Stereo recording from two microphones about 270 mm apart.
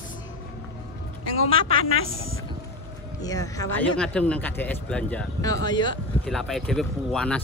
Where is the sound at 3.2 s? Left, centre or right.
Centre.